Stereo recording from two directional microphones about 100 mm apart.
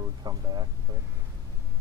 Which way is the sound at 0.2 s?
45° right (ahead or behind).